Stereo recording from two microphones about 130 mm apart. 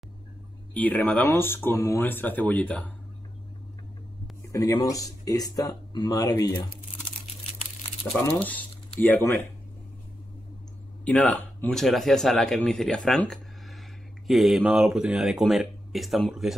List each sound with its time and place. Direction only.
0.7 s speech: 10° left (ahead or behind)
4.5 s speech: 25° left (ahead or behind)
8.2 s speech: 10° left (ahead or behind)
11.1 s speech: 10° left (ahead or behind)